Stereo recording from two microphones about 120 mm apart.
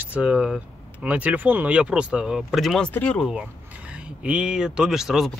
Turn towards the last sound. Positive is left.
turn(degrees=-5)  # may be behind; listen again after turning